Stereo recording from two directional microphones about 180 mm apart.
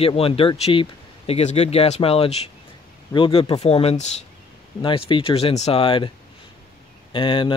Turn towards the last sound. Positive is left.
turn(degrees=30)  # may be behind; listen again after turning